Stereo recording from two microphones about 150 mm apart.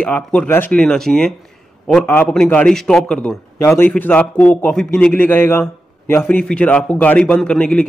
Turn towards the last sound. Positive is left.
turn(degrees=5)  # may be behind; listen again after turning